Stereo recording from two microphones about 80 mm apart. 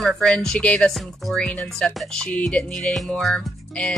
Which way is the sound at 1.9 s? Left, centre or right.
Centre.